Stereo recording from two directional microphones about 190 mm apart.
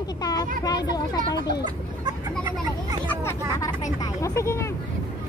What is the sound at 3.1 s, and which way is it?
Speech, 15° left (ahead or behind).